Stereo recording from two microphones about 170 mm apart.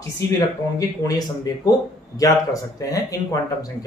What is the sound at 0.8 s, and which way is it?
Speech, 20° left (ahead or behind).